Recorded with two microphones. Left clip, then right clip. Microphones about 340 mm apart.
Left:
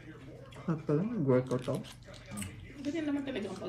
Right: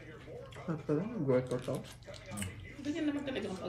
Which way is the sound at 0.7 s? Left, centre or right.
Left.